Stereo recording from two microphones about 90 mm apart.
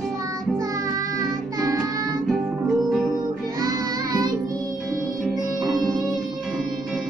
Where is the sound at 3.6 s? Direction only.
50° right (ahead or behind).